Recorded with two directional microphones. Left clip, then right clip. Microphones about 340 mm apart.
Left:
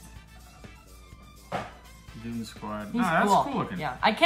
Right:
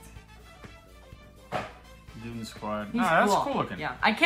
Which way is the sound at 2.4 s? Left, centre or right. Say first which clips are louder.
Right 4 dB; centre.